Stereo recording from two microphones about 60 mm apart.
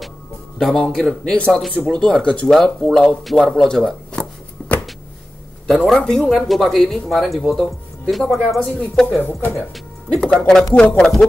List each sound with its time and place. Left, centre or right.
0.6 s speech: centre
1.5 s speech: centre
1.9 s speech: centre
4.6 s a sound: centre
5.7 s speech: centre